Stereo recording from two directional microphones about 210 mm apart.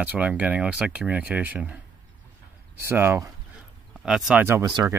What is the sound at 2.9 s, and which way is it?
Speech, 10° right (ahead or behind).